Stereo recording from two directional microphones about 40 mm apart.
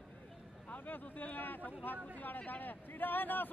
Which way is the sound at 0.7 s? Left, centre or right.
Left.